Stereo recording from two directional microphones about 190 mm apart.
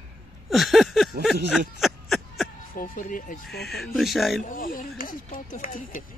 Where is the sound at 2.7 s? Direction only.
50° left (ahead or behind).